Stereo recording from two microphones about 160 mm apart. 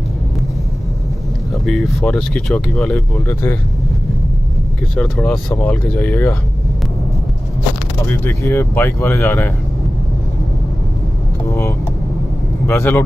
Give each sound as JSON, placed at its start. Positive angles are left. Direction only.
{"t": 1.7, "sound": "speech", "side_deg": 0}
{"t": 4.9, "sound": "speech", "side_deg": 0}
{"t": 8.2, "sound": "speech", "side_deg": 15}
{"t": 11.4, "sound": "vehicle", "side_deg": 15}
{"t": 12.6, "sound": "speech", "side_deg": 15}